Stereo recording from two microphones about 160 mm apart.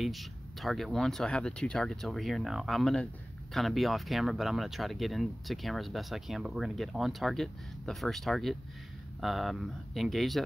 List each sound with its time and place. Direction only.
0.0 s speech: centre (ahead or behind)